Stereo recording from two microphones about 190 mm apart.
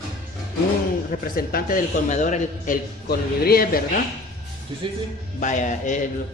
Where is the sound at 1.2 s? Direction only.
50° left (ahead or behind).